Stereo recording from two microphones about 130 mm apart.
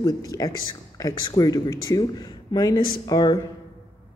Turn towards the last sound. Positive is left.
turn(degrees=30)  # may be behind; listen again after turning